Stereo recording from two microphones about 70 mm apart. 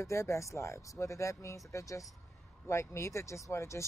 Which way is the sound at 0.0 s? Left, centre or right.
Left.